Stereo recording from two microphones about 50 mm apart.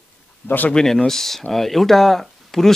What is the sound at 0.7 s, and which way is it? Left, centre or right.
Speech, centre.